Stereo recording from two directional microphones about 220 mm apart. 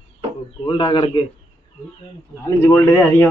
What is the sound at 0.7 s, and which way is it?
Speech, 20° left (ahead or behind).